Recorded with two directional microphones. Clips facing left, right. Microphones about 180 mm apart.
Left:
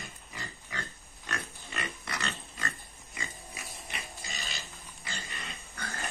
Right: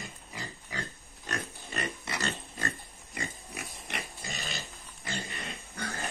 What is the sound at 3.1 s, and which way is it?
Pig, 60° right (ahead or behind).